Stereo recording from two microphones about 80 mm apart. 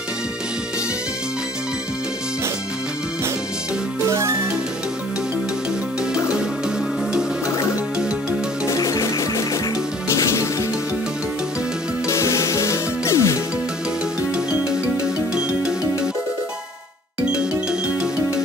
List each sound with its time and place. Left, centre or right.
4.0 s music: right
8.6 s music: left
12.1 s music: left
14.3 s music: centre
17.2 s music: centre